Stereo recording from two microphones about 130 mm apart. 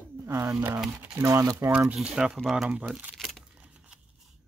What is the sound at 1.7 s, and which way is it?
Speech, 10° right (ahead or behind).